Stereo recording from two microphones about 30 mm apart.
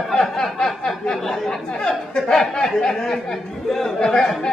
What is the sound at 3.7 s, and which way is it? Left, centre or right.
Speech, centre.